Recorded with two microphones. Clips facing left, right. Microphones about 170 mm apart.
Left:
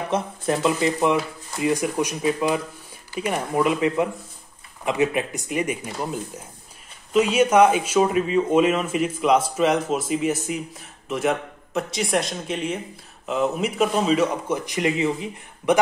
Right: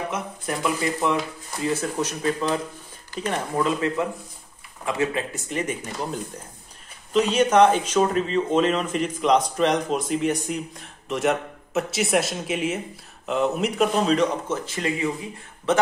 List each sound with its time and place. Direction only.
0.1 s speech: 25° left (ahead or behind)
7.2 s speech: 10° left (ahead or behind)